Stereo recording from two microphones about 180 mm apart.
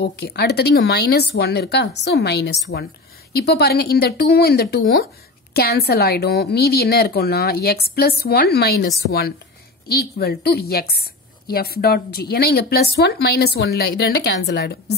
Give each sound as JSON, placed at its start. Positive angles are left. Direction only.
{"t": 0.0, "sound": "a woman's voice", "side_deg": 65}